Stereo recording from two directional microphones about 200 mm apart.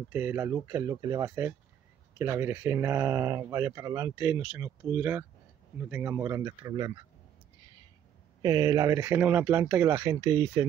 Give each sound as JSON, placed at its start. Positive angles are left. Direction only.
{"t": 0.1, "sound": "speech", "side_deg": -10}
{"t": 8.4, "sound": "speech", "side_deg": -20}